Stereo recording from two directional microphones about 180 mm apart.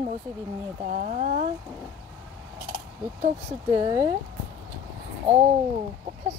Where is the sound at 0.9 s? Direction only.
40° right (ahead or behind).